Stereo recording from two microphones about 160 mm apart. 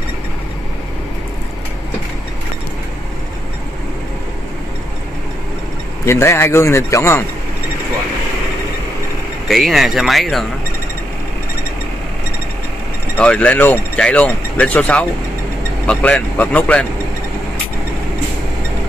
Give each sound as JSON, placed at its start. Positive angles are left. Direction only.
{"t": 6.0, "sound": "speech", "side_deg": 15}
{"t": 9.5, "sound": "speech", "side_deg": 0}
{"t": 13.2, "sound": "speech", "side_deg": 5}